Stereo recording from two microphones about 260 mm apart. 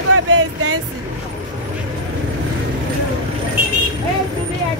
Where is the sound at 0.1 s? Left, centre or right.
Right.